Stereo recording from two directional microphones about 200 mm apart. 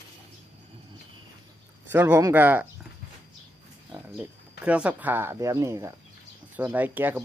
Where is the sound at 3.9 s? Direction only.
10° right (ahead or behind).